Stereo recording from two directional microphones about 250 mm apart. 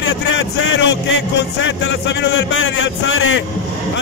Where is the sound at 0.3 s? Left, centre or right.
Left.